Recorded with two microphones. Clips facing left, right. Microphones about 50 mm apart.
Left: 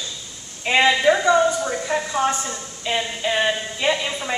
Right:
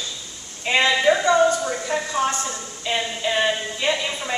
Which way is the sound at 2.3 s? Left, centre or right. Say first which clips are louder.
Even; centre.